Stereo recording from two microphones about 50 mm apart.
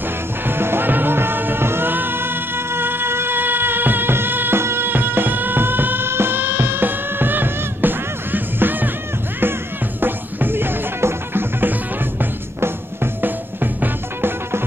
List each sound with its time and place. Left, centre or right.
0.5 s music: right
12.5 s drum: right